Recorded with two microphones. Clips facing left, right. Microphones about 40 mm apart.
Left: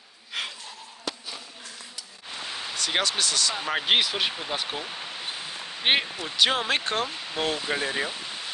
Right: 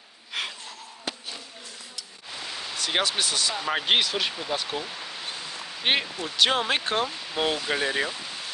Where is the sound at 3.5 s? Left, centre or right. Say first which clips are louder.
Even; centre.